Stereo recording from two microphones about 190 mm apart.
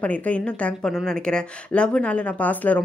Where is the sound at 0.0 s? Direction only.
5° left (ahead or behind).